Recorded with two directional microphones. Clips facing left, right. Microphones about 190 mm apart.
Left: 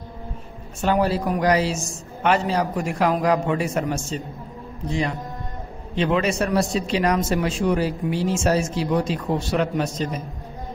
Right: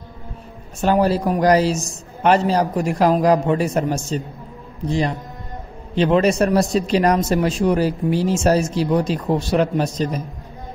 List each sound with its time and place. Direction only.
0.7 s speech: 40° right (ahead or behind)
5.9 s speech: 40° right (ahead or behind)